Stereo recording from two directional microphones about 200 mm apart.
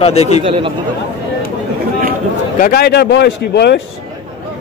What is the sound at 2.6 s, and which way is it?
Speech, 50° left (ahead or behind).